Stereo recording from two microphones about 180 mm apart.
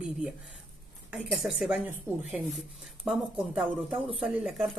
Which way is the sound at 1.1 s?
5° right (ahead or behind).